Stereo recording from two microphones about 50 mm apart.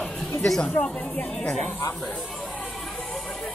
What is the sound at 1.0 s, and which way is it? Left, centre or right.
Speech, left.